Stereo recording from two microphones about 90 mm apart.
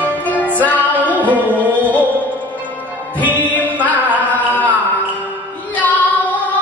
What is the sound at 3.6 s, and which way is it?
Music, 15° right (ahead or behind).